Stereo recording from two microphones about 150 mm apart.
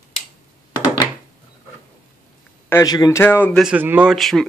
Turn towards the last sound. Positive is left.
turn(degrees=0)  # may be behind; listen again after turning